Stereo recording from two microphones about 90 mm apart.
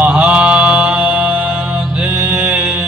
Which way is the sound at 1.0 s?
20° right (ahead or behind).